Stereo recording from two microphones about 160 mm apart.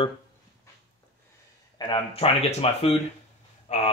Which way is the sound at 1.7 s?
25° left (ahead or behind).